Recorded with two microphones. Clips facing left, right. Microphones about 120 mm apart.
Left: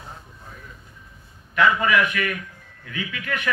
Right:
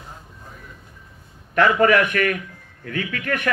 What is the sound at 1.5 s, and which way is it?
A man's voice, 50° right (ahead or behind).